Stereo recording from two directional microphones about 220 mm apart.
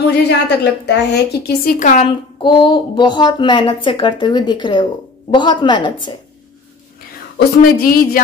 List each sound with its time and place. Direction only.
0.0 s a woman's voice: 50° left (ahead or behind)
2.4 s speech: 20° left (ahead or behind)
7.3 s speech: 40° left (ahead or behind)